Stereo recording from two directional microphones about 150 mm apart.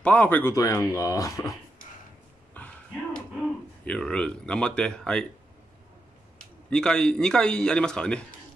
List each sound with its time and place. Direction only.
0.0 s speech: 10° left (ahead or behind)
2.6 s a sound: 10° left (ahead or behind)
3.8 s speech: 5° left (ahead or behind)
6.7 s a man's voice: 5° left (ahead or behind)